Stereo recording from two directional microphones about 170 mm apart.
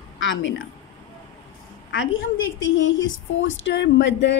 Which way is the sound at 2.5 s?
90° left.